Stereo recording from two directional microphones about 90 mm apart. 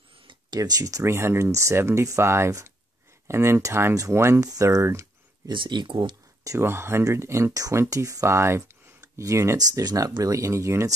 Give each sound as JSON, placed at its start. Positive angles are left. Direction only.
{"t": 0.6, "sound": "speech", "side_deg": -40}
{"t": 1.0, "sound": "speech", "side_deg": -30}
{"t": 4.5, "sound": "speech", "side_deg": -40}
{"t": 5.5, "sound": "speech", "side_deg": -60}
{"t": 6.4, "sound": "speech", "side_deg": -35}